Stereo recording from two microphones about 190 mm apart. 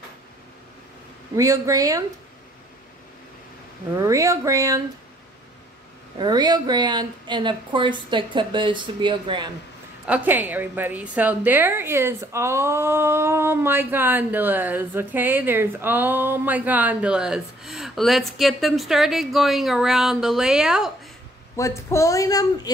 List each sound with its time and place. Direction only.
1.3 s a woman's voice: 20° right (ahead or behind)
3.9 s a woman's voice: 15° right (ahead or behind)
6.1 s a woman's voice: 25° right (ahead or behind)
10.0 s a woman's voice: 10° right (ahead or behind)
21.5 s speech: 15° left (ahead or behind)